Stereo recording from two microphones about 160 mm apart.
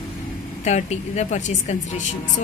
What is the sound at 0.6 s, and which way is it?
A woman's voice, 45° left (ahead or behind).